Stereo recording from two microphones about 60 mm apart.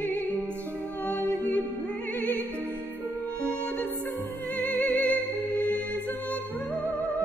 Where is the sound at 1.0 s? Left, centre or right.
Left.